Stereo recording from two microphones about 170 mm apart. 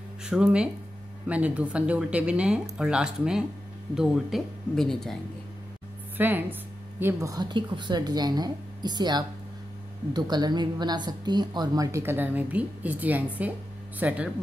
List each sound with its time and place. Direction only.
0.2 s speech: 5° right (ahead or behind)
6.1 s a woman's voice: 10° right (ahead or behind)